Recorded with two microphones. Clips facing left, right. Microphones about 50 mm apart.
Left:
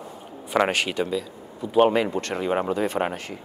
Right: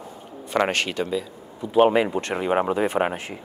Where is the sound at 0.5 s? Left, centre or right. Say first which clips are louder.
Even; centre.